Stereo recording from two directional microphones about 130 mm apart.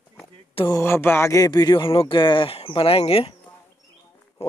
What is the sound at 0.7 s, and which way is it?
Speech, 20° left (ahead or behind).